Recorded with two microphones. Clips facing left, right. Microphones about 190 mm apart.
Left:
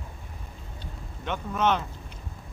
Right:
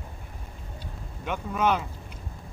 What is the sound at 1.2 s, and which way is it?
Speech, 10° right (ahead or behind).